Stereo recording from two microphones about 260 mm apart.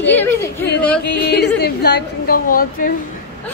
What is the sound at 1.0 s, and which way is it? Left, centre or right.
A woman's voice, left.